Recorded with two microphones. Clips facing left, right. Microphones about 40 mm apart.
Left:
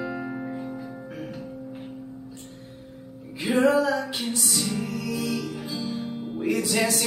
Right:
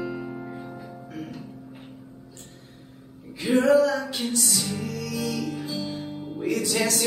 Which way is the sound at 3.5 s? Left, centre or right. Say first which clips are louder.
Right 2 dB; centre.